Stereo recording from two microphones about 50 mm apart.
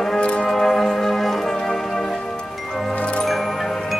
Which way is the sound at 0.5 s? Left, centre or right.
Centre.